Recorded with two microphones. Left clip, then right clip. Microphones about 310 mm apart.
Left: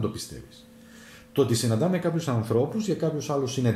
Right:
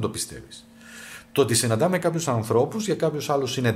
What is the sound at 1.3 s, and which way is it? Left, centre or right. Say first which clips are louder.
Speech: right 3 dB; right.